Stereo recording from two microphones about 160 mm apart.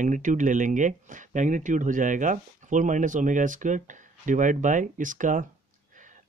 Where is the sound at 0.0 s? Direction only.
50° right (ahead or behind).